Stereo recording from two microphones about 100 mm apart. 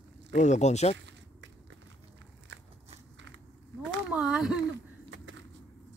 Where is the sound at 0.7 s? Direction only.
90° left.